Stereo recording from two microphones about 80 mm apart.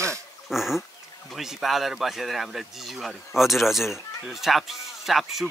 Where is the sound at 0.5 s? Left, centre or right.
Centre.